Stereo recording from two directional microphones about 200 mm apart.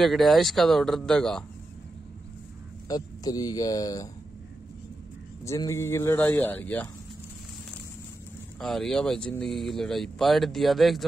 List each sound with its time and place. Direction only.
0.0 s speech: centre (ahead or behind)
2.9 s speech: 20° left (ahead or behind)
5.4 s speech: 15° left (ahead or behind)
8.5 s speech: centre (ahead or behind)